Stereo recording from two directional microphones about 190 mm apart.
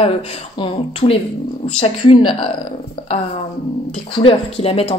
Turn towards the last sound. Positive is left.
turn(degrees=30)  # may be behind; listen again after turning